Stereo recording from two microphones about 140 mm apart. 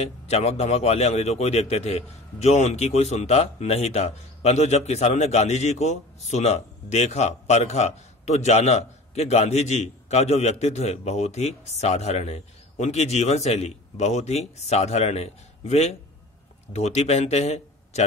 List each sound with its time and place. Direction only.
0.0 s speech: 50° left (ahead or behind)